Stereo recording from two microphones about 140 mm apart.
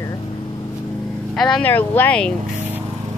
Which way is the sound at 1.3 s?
Centre (ahead or behind).